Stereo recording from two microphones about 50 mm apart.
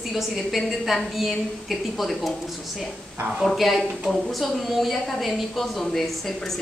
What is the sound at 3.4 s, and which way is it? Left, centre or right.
A woman's voice, centre.